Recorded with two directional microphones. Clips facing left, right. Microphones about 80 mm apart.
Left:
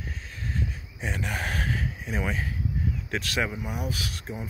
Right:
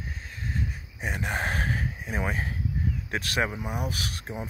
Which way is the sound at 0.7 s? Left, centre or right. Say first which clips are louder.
Even; centre.